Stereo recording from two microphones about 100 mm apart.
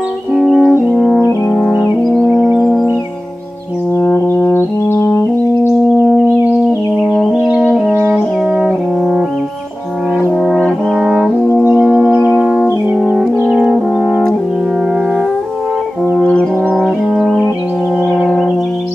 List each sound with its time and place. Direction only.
0.3 s french horn: centre (ahead or behind)
2.2 s music: 10° right (ahead or behind)
2.6 s music: 5° left (ahead or behind)
4.5 s brass instrument: 25° left (ahead or behind)
5.6 s singing bowl: 25° left (ahead or behind)
7.0 s french horn: 5° left (ahead or behind)
8.1 s brass instrument: 5° right (ahead or behind)
10.4 s brass instrument: 5° left (ahead or behind)
11.8 s music: 15° right (ahead or behind)
12.9 s brass instrument: 15° right (ahead or behind)
16.2 s brass instrument: 10° left (ahead or behind)